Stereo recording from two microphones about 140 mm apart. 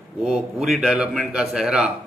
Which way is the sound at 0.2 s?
5° right (ahead or behind).